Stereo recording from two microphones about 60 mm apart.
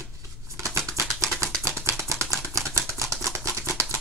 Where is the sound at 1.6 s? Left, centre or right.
Right.